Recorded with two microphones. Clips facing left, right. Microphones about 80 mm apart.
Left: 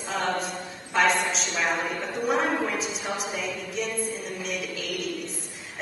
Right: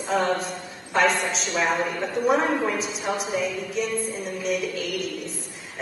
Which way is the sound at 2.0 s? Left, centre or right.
Centre.